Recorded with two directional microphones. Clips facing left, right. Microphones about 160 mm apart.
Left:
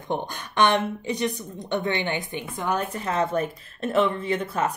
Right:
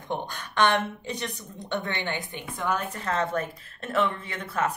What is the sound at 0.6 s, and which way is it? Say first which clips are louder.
A woman's voice: left 3 dB; 15° left (ahead or behind).